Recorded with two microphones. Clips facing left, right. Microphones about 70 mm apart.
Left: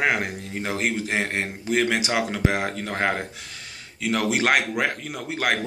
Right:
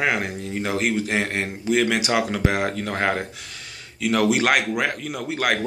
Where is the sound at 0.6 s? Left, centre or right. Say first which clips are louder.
Right 3 dB; left.